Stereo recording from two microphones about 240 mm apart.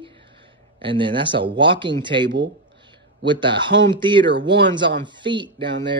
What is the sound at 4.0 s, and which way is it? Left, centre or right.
Speech, centre.